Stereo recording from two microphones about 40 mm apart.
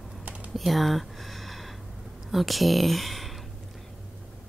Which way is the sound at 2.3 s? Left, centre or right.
Centre.